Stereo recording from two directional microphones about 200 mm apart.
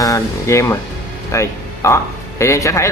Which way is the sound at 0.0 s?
15° left (ahead or behind).